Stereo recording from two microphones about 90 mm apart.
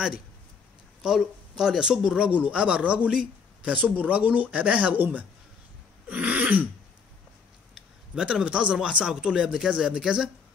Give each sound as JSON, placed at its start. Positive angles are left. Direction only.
{"t": 1.0, "sound": "speech", "side_deg": -5}
{"t": 6.0, "sound": "throat clearing", "side_deg": -15}
{"t": 7.7, "sound": "a sound", "side_deg": -5}
{"t": 8.7, "sound": "speech", "side_deg": -10}